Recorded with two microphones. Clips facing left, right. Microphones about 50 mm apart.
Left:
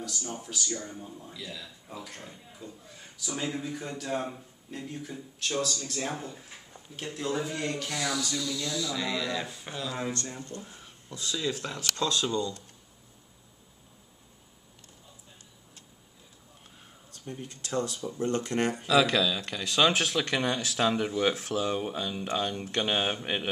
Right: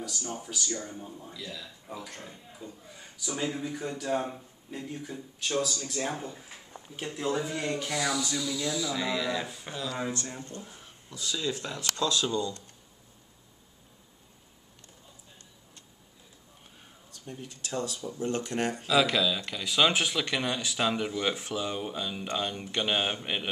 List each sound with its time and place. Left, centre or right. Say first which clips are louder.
0.0 s speech: right 1 dB; centre
1.3 s speech: even; centre
10.6 s a sound: even; centre
12.2 s speech: even; centre
17.1 s speech: left 2 dB; left
18.9 s speech: left 1 dB; centre